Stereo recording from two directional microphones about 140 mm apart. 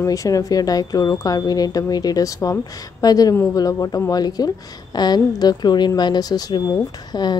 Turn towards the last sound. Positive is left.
turn(degrees=30)  # may be behind; listen again after turning